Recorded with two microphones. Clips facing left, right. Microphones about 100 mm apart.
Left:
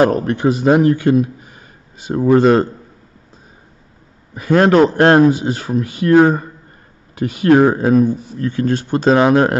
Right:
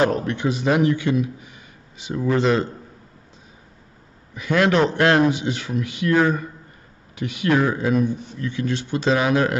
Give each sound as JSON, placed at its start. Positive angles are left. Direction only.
{"t": 0.0, "sound": "speech", "side_deg": 45}
{"t": 4.3, "sound": "speech", "side_deg": 40}